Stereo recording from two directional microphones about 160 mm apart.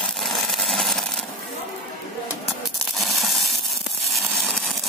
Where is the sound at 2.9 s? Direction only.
Centre (ahead or behind).